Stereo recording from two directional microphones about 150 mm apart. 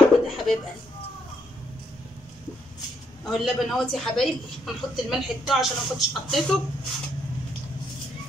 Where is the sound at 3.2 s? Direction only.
Centre (ahead or behind).